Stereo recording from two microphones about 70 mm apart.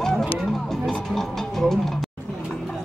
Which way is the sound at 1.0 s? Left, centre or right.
Centre.